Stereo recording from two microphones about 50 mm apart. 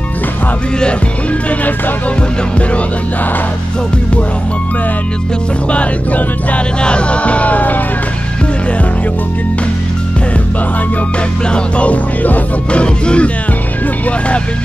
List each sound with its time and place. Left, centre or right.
5.7 s music: left
11.4 s music: left
12.8 s music: left